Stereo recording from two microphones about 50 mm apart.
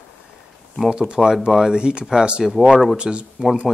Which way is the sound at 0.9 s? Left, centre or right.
Centre.